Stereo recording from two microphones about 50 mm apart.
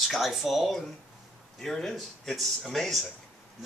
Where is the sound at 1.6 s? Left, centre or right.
Centre.